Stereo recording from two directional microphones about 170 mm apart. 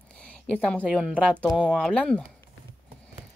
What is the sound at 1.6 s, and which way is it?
Speech, 5° left (ahead or behind).